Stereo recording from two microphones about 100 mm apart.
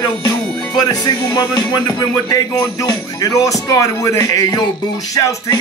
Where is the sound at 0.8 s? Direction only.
40° left (ahead or behind).